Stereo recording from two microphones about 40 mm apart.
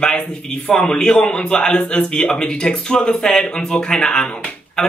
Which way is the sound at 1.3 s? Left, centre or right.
Left.